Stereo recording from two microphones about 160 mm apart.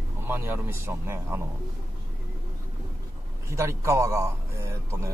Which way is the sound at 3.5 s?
20° right (ahead or behind).